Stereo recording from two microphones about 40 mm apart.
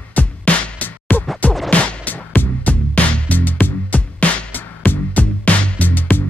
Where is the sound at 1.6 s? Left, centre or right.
Left.